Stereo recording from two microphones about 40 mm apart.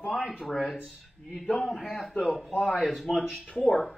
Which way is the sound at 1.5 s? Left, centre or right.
Centre.